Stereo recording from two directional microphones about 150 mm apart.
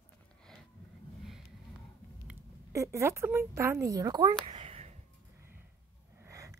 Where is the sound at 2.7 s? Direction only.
20° right (ahead or behind).